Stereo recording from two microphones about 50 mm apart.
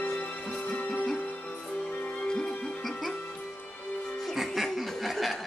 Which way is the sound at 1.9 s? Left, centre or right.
Left.